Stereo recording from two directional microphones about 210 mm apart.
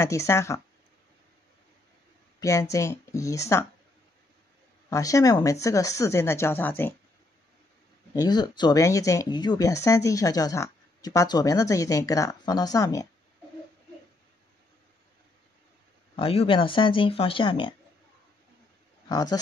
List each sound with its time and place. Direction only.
0.0 s speech: 15° left (ahead or behind)
2.7 s speech: 15° left (ahead or behind)
4.8 s speech: 15° left (ahead or behind)
8.1 s speech: 20° left (ahead or behind)
16.2 s speech: 25° left (ahead or behind)
19.0 s speech: 20° left (ahead or behind)